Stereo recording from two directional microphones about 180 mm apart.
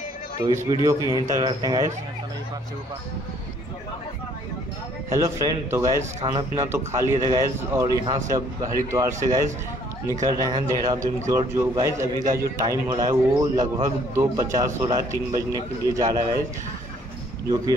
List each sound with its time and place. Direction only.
0.4 s a man's voice: 20° right (ahead or behind)
5.1 s a man's voice: 20° right (ahead or behind)